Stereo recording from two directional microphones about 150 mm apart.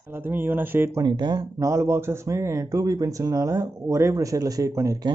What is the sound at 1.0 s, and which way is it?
Speech, 30° right (ahead or behind).